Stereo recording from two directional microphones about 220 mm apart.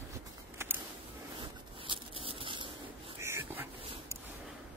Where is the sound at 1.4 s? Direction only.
25° right (ahead or behind).